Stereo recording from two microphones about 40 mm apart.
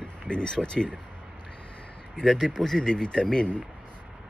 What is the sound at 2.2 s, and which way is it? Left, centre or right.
Speech, centre.